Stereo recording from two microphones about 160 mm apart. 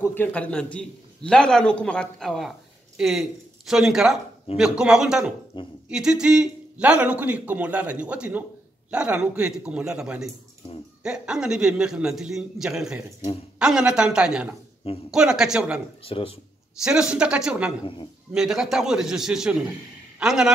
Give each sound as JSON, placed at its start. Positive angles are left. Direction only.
{"t": 0.1, "sound": "a man's voice", "side_deg": 10}
{"t": 5.5, "sound": "speech", "side_deg": 30}
{"t": 5.9, "sound": "a man's voice", "side_deg": -5}
{"t": 16.0, "sound": "speech", "side_deg": 35}
{"t": 16.8, "sound": "a man's voice", "side_deg": -5}